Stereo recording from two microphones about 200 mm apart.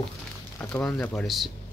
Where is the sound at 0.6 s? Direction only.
10° left (ahead or behind).